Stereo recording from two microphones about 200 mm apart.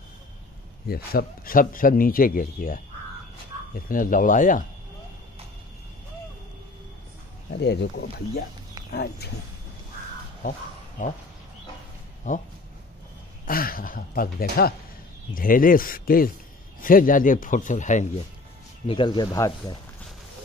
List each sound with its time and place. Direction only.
0.8 s a man's voice: 50° left (ahead or behind)
7.5 s a man's voice: 60° left (ahead or behind)
12.2 s speech: 40° left (ahead or behind)
13.5 s a man's voice: 45° left (ahead or behind)
18.9 s speech: 25° left (ahead or behind)